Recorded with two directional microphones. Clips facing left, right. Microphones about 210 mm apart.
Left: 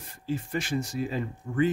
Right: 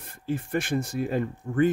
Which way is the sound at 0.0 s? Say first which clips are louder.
Right 2 dB; 55° right (ahead or behind).